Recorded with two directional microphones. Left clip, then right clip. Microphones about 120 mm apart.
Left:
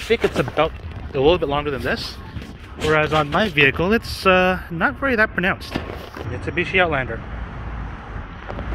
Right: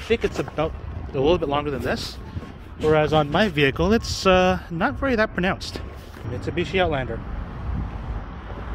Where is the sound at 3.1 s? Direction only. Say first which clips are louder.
Left 1 dB; 65° right (ahead or behind).